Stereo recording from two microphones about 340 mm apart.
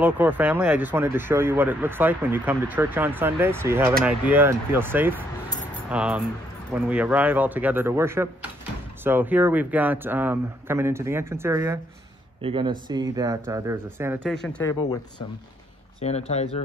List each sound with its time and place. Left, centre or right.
0.0 s speech: centre